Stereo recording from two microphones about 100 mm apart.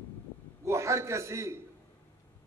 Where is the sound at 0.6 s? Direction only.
30° right (ahead or behind).